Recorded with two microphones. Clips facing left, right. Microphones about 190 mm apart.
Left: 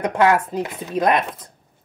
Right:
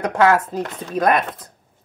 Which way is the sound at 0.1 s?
15° left (ahead or behind).